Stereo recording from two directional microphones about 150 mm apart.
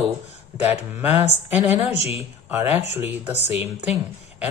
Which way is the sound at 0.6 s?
10° right (ahead or behind).